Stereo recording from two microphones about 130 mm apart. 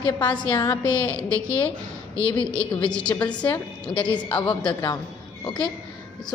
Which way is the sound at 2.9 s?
10° left (ahead or behind).